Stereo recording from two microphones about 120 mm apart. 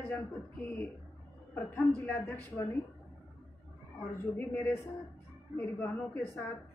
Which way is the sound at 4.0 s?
10° left (ahead or behind).